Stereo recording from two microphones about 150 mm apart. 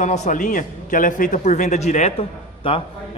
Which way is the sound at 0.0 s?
50° left (ahead or behind).